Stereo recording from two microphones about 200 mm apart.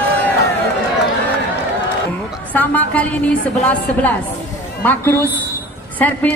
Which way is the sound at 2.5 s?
10° left (ahead or behind).